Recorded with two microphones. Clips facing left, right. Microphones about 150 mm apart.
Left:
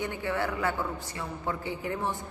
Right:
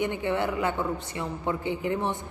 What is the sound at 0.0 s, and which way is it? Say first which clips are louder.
A man's voice: right 4 dB; 20° right (ahead or behind).